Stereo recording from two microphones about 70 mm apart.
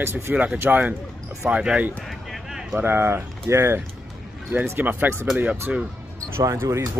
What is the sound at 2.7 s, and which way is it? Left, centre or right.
Speech, right.